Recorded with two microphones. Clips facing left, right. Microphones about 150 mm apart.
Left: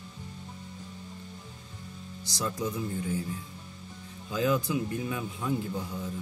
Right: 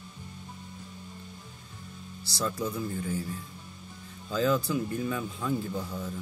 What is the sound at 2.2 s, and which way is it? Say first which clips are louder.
Speech: right 1 dB; 15° left (ahead or behind).